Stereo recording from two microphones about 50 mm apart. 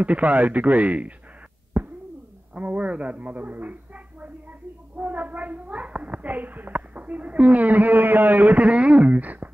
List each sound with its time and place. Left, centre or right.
0.0 s speech: right
1.8 s a sound: right
2.5 s a child's voice: right